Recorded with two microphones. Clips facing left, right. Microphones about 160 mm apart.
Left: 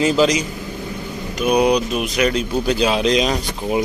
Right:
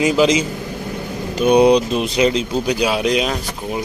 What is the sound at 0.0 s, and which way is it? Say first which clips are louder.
Speech: right 1 dB; 10° right (ahead or behind).